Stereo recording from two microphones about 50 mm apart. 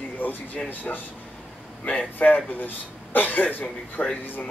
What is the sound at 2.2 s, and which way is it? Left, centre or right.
Speech, centre.